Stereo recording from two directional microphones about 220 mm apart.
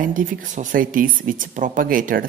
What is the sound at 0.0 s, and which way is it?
Speech, 40° right (ahead or behind).